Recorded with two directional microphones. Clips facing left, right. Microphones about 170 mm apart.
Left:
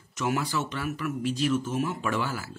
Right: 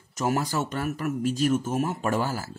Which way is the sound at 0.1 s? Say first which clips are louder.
Right 2 dB; 40° right (ahead or behind).